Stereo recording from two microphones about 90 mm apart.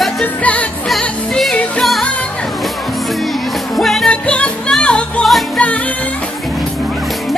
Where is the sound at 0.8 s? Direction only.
Centre (ahead or behind).